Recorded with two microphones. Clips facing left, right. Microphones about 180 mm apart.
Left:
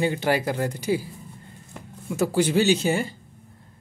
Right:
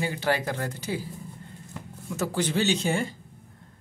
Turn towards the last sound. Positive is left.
turn(degrees=5)  # may be behind; listen again after turning